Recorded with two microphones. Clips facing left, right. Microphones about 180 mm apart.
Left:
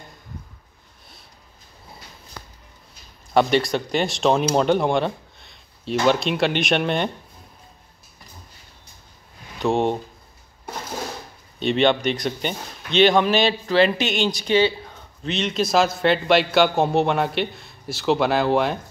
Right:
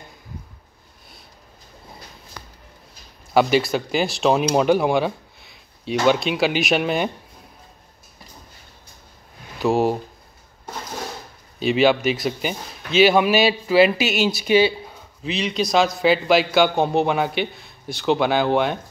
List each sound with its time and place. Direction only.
3.3 s speech: 5° right (ahead or behind)
9.6 s speech: 5° right (ahead or behind)
11.6 s speech: 5° right (ahead or behind)